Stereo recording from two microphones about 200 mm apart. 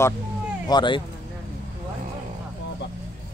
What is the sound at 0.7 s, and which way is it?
Speech, 20° left (ahead or behind).